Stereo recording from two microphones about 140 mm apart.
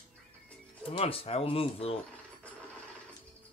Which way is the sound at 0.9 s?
45° left (ahead or behind).